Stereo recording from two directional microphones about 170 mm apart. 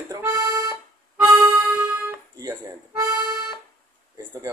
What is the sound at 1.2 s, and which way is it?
Music, 10° right (ahead or behind).